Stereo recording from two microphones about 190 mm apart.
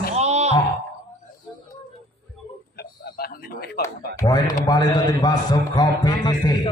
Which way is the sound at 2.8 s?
55° left (ahead or behind).